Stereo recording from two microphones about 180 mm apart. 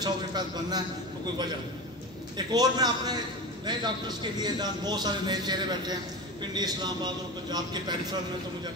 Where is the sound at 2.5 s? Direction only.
20° right (ahead or behind).